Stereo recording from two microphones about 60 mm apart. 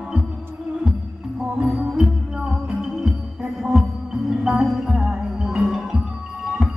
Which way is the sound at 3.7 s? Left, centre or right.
Centre.